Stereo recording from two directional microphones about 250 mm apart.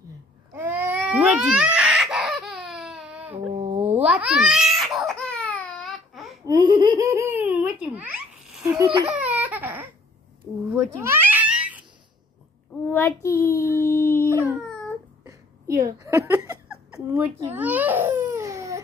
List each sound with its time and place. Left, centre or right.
0.5 s a sound: centre
3.6 s a sound: right
3.9 s babbling: centre
6.4 s giggle: centre
8.7 s speech: centre
9.2 s baby cry: centre
10.7 s babbling: centre
12.8 s speech: centre
15.2 s giggle: centre